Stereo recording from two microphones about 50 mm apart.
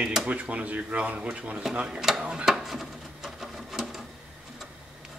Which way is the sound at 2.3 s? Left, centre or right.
Centre.